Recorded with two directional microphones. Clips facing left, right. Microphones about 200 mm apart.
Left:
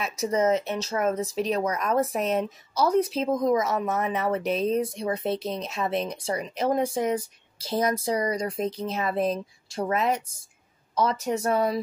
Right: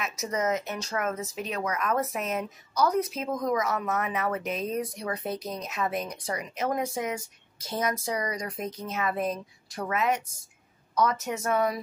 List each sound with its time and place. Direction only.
0.0 s speech: 30° left (ahead or behind)